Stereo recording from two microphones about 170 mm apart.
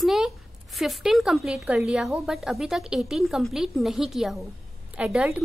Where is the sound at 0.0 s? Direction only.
Centre (ahead or behind).